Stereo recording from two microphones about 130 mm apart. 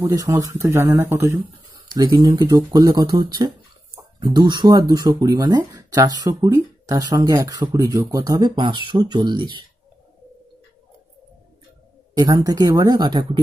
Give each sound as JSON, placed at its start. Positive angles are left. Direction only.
{"t": 0.0, "sound": "speech", "side_deg": -30}
{"t": 2.0, "sound": "speech", "side_deg": -35}
{"t": 12.1, "sound": "speech", "side_deg": -30}